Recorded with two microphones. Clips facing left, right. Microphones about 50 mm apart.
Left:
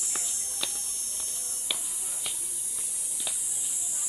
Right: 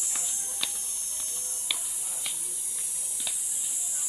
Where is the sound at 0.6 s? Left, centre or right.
Centre.